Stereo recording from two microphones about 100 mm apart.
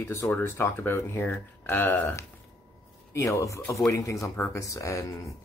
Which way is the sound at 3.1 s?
30° left (ahead or behind).